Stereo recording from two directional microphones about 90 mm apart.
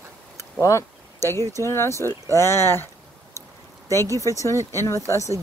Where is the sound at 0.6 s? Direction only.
30° left (ahead or behind).